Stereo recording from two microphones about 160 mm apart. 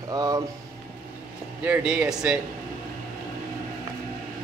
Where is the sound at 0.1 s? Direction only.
25° right (ahead or behind).